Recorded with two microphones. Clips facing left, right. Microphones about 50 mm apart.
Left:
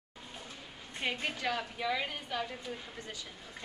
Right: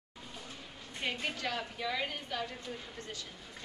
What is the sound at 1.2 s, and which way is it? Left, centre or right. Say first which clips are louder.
A woman's voice: left 2 dB; centre.